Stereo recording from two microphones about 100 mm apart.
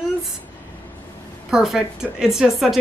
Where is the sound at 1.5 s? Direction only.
5° right (ahead or behind).